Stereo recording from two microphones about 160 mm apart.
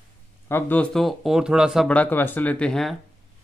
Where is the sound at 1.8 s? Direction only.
10° left (ahead or behind).